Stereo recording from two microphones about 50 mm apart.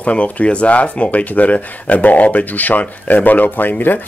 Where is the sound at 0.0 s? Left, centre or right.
Left.